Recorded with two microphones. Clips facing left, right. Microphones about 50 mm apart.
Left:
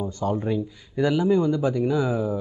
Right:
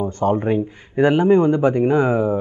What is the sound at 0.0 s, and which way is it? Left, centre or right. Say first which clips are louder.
Speech: right 7 dB; right.